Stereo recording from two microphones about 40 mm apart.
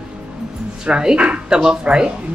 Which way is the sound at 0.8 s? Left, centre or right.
Right.